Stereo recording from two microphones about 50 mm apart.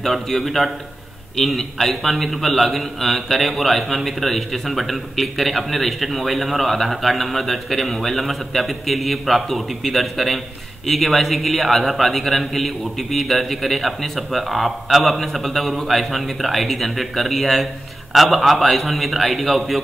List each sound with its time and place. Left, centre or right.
0.0 s a man's voice: centre